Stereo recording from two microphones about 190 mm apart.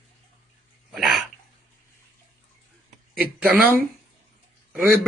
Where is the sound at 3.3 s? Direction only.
10° right (ahead or behind).